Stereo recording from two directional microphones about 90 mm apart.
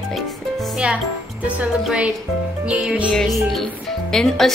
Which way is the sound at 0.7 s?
10° right (ahead or behind).